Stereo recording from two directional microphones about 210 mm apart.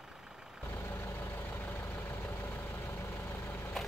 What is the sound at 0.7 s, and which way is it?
Vehicle, 10° left (ahead or behind).